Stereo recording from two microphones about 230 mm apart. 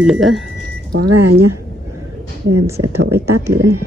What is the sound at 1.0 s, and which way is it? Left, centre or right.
Speech, right.